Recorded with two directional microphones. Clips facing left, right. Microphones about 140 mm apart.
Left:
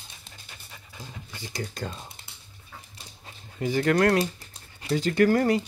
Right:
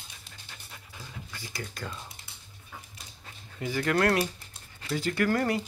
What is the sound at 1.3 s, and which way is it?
Speech, 25° left (ahead or behind).